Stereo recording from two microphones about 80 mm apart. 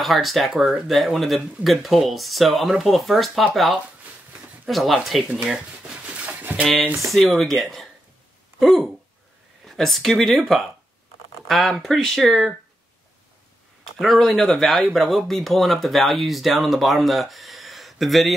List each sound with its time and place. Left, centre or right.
0.0 s speech: centre
6.5 s a sound: right
7.1 s speech: centre
13.9 s speech: centre